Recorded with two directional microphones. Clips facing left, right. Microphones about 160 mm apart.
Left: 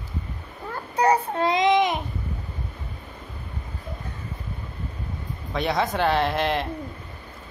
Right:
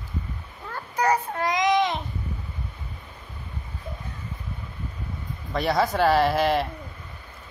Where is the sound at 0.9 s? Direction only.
30° left (ahead or behind).